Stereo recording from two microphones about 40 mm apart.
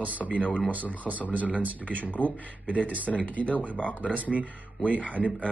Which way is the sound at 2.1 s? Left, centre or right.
Left.